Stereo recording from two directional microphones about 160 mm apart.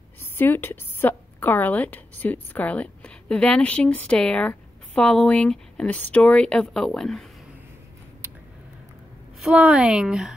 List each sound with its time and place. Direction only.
0.2 s a woman's voice: 15° left (ahead or behind)
9.4 s a woman's voice: 5° right (ahead or behind)